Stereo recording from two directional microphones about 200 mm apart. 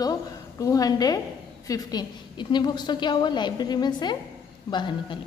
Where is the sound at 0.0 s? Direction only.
15° left (ahead or behind).